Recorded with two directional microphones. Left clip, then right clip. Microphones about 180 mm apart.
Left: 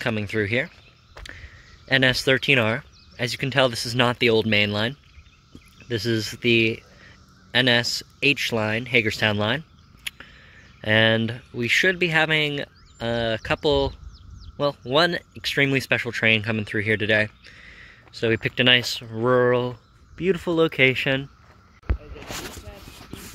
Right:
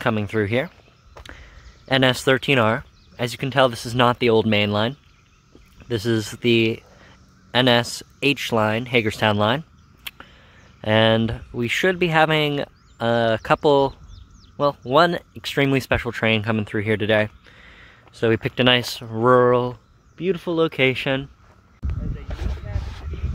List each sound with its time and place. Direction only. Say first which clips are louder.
0.0 s speech: right 3 dB; 15° right (ahead or behind)
20.2 s speech: even; 5° left (ahead or behind)